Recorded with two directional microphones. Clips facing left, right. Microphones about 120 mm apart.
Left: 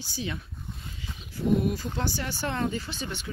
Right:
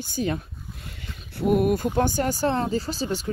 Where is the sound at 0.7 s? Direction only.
65° right (ahead or behind).